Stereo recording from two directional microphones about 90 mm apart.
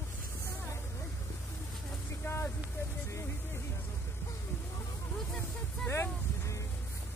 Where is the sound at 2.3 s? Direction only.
25° left (ahead or behind).